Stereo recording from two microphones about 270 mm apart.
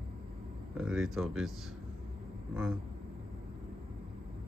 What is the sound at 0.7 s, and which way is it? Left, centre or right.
Speech, centre.